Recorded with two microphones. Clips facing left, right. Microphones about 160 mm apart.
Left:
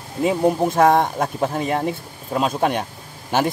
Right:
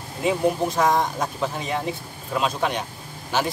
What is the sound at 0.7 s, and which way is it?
Speech, 60° left (ahead or behind).